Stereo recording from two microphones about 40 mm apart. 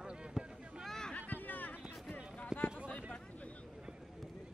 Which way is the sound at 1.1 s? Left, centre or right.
Left.